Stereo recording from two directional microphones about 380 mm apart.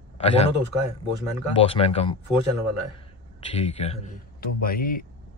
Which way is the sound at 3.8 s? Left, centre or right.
Centre.